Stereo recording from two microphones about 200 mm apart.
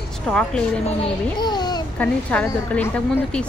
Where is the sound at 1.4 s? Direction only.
20° left (ahead or behind).